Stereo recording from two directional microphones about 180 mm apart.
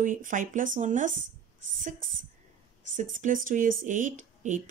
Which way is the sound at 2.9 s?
45° right (ahead or behind).